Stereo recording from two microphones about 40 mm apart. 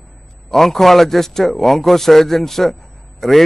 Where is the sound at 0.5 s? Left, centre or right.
Centre.